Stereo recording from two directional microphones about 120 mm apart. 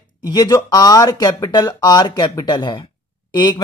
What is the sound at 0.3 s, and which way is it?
Speech, 30° left (ahead or behind).